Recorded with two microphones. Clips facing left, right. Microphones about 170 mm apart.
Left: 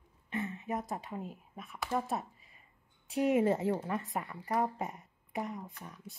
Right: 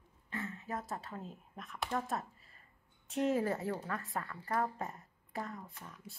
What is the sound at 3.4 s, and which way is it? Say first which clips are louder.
Speech: left 6 dB; 25° left (ahead or behind).